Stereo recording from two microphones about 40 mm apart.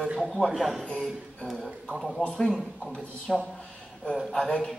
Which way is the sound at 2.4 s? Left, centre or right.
Centre.